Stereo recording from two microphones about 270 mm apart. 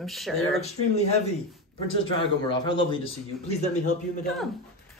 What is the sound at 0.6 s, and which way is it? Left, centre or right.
Speech, left.